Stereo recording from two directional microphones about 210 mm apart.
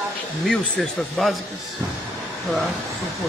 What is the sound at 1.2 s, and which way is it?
Speech, centre (ahead or behind).